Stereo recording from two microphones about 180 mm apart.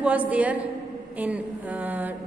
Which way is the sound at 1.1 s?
10° right (ahead or behind).